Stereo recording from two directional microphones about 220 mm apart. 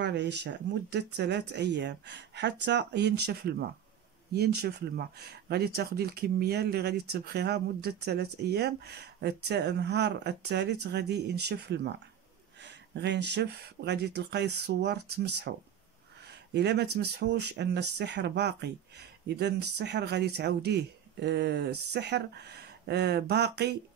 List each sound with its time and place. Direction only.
0.0 s speech: 50° right (ahead or behind)
16.5 s speech: 50° right (ahead or behind)